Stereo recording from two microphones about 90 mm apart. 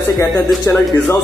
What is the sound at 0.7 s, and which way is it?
Speech, 25° left (ahead or behind).